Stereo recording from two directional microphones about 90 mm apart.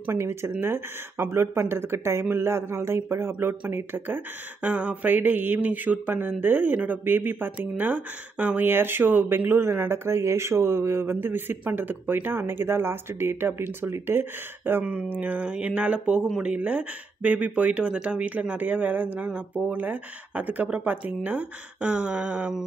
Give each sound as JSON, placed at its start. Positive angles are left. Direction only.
{"t": 0.0, "sound": "mantra", "side_deg": -30}